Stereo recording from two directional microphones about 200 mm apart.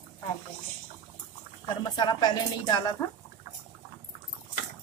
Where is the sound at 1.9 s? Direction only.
20° left (ahead or behind).